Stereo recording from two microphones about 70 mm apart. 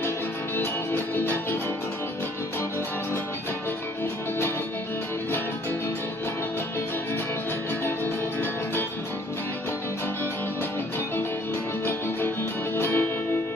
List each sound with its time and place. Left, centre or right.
0.6 s music: left
7.8 s music: left
12.7 s music: left